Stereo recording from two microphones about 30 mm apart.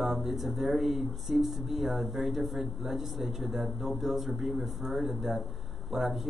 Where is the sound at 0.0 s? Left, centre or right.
Centre.